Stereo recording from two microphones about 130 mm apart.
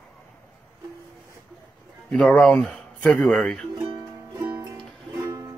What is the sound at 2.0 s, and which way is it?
Speech, 5° left (ahead or behind).